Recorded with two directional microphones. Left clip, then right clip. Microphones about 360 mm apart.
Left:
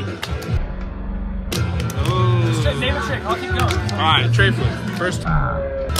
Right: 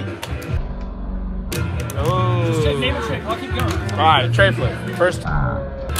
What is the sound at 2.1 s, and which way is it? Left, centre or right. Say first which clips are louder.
Music: even; centre.